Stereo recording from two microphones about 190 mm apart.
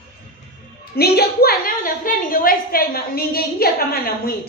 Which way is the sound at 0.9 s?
55° left (ahead or behind).